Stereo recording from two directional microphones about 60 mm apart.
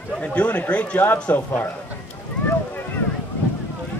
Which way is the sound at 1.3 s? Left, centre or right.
Left.